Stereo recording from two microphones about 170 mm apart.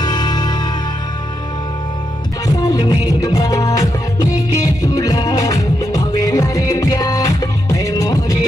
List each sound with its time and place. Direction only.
0.0 s music: 25° left (ahead or behind)
2.4 s music: 20° left (ahead or behind)